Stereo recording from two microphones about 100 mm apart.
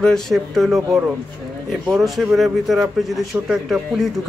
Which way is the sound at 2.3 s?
Centre (ahead or behind).